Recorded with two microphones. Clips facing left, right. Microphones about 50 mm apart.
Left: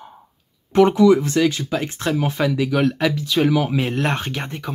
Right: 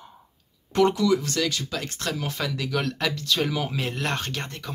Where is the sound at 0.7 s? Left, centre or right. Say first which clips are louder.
Left 7 dB; left.